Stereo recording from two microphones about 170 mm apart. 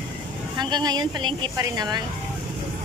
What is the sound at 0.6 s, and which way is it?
Speech, 25° right (ahead or behind).